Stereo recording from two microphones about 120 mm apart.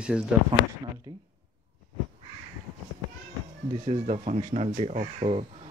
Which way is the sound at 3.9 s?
65° right (ahead or behind).